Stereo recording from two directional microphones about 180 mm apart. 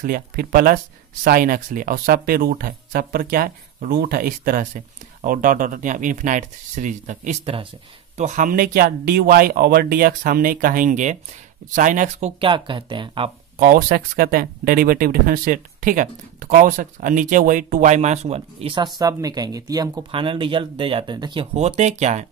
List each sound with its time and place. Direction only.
0.0 s speech: 55° right (ahead or behind)
12.4 s speech: 25° right (ahead or behind)
13.6 s speech: 55° right (ahead or behind); by 18.9 s 30° right (ahead or behind)
18.9 s speech: 20° right (ahead or behind); by 22.2 s 40° right (ahead or behind)